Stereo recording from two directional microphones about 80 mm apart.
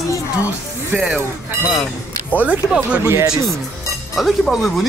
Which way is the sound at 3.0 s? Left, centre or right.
Right.